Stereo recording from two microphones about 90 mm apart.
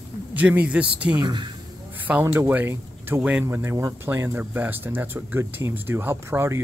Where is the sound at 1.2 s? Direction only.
55° right (ahead or behind).